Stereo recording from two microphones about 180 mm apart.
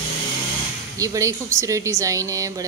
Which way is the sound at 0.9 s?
20° right (ahead or behind).